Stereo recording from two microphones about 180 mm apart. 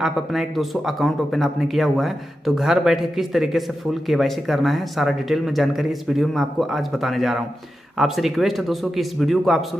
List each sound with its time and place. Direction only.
0.0 s speech: centre (ahead or behind)